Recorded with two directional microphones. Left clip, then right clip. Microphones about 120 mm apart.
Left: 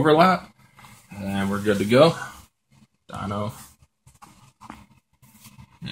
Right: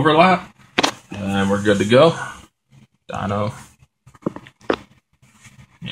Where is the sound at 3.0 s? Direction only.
Centre (ahead or behind).